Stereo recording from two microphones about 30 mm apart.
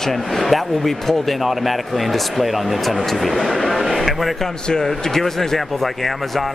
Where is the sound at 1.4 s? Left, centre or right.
Centre.